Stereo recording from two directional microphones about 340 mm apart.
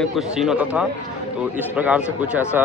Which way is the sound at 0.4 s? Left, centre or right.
Centre.